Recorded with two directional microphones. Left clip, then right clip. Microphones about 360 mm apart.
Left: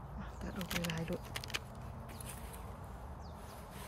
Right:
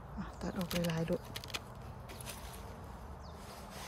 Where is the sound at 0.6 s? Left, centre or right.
Centre.